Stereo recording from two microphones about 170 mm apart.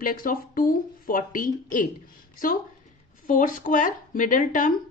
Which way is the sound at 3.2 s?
50° left (ahead or behind).